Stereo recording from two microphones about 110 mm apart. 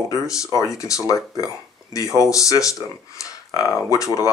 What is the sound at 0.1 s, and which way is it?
Speech, 30° left (ahead or behind).